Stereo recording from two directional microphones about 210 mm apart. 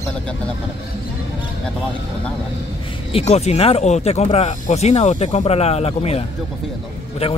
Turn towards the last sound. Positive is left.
turn(degrees=30)  # may be behind; listen again after turning